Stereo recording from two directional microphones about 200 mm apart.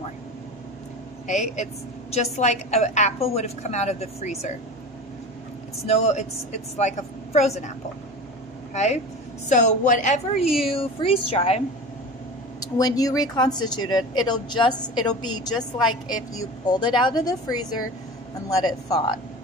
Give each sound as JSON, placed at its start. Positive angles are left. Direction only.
{"t": 1.2, "sound": "a woman's voice", "side_deg": 35}
{"t": 5.9, "sound": "a woman's voice", "side_deg": 30}
{"t": 8.7, "sound": "a woman's voice", "side_deg": 35}
{"t": 12.5, "sound": "speech", "side_deg": 20}
{"t": 15.0, "sound": "a woman's voice", "side_deg": 90}
{"t": 16.6, "sound": "speech", "side_deg": 20}
{"t": 18.9, "sound": "speech", "side_deg": 20}